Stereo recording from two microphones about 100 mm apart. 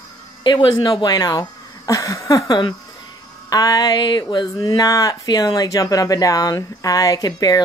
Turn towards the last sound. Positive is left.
turn(degrees=40)  # may be behind; listen again after turning